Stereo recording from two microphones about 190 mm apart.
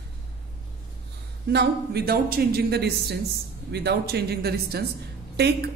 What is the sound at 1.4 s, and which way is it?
A woman's voice, 55° right (ahead or behind).